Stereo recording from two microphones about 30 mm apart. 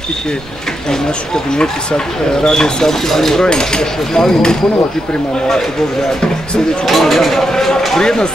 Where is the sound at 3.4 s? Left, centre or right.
Left.